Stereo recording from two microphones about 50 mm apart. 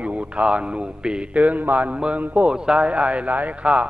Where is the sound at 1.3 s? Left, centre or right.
Right.